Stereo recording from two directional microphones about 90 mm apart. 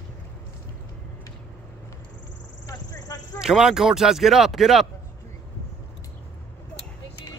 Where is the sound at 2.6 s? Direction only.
40° left (ahead or behind).